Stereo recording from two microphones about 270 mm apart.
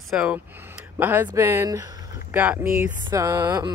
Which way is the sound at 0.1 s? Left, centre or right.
Centre.